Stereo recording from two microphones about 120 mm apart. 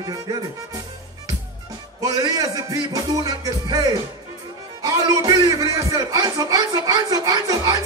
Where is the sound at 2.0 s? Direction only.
30° right (ahead or behind).